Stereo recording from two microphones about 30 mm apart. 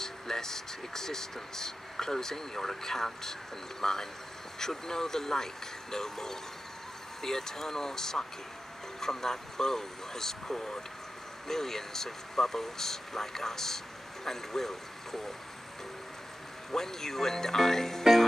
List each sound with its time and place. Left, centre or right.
0.0 s speech: centre
16.7 s speech: centre